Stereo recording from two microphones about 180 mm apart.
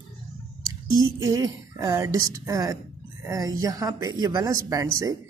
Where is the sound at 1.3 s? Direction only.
20° right (ahead or behind).